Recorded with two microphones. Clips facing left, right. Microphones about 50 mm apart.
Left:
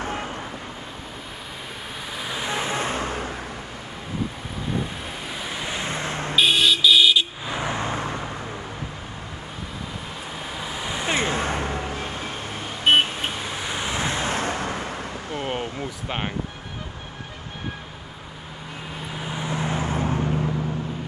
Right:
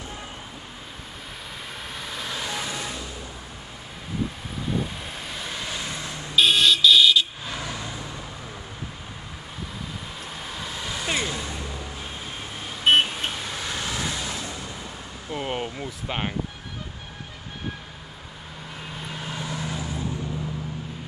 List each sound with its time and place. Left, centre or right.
0.0 s vehicle: left
2.1 s vehicle: centre
2.5 s vehicle: left
5.3 s vehicle: centre
5.8 s vehicle: left
6.3 s vehicle: centre; by 8.0 s left
8.0 s vehicle: left
10.5 s vehicle: centre; by 12.3 s left
13.0 s vehicle: centre; by 15.0 s left
15.4 s vehicle: centre
15.8 s a sound: centre
19.0 s vehicle: centre
19.4 s vehicle: left